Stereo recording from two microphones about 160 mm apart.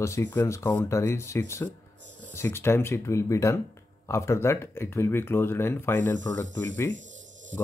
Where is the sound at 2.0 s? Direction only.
50° right (ahead or behind).